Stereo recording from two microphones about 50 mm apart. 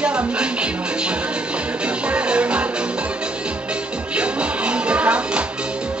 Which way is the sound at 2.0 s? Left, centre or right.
Right.